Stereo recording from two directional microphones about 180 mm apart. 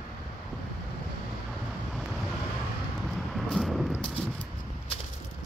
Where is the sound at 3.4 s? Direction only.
Centre (ahead or behind).